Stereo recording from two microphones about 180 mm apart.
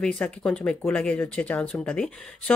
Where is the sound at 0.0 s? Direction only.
5° left (ahead or behind).